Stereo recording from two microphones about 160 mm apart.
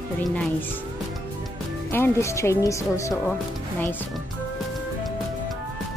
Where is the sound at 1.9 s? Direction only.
15° left (ahead or behind).